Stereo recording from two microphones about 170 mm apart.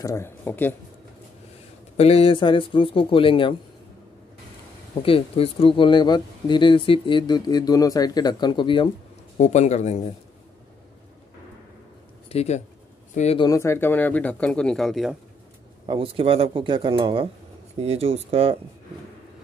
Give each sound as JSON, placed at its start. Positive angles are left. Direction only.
{"t": 0.0, "sound": "speech", "side_deg": 15}
{"t": 2.0, "sound": "speech", "side_deg": 35}
{"t": 5.0, "sound": "speech", "side_deg": 35}
{"t": 9.4, "sound": "speech", "side_deg": 40}
{"t": 12.3, "sound": "speech", "side_deg": 40}
{"t": 13.4, "sound": "speech", "side_deg": 20}
{"t": 15.9, "sound": "speech", "side_deg": -30}